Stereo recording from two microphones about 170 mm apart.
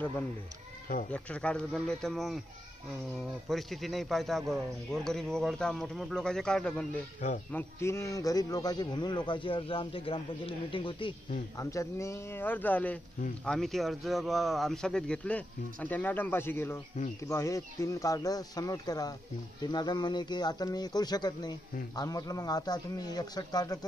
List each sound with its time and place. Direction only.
1.1 s a man's voice: 5° left (ahead or behind)
3.4 s a man's voice: centre (ahead or behind)
7.5 s speech: 15° left (ahead or behind)
11.5 s a man's voice: 20° left (ahead or behind)